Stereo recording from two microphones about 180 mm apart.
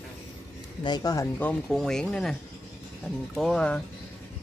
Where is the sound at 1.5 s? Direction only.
5° left (ahead or behind).